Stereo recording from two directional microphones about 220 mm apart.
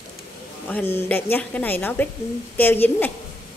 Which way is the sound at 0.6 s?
10° left (ahead or behind).